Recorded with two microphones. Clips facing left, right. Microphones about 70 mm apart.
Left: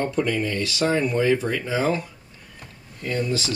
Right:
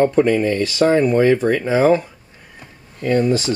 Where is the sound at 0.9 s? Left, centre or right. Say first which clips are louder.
Right 7 dB; right.